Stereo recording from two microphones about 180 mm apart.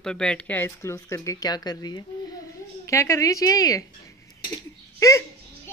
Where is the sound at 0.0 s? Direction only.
5° left (ahead or behind).